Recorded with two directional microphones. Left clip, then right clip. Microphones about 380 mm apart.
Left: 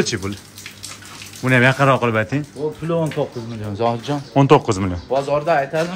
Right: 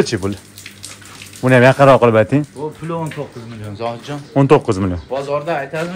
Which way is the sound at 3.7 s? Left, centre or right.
Left.